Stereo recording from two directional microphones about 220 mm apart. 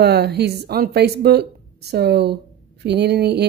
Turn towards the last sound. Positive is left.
turn(degrees=-50)  # may be behind; listen again after turning